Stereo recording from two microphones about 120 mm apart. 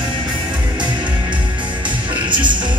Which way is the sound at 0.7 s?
40° right (ahead or behind).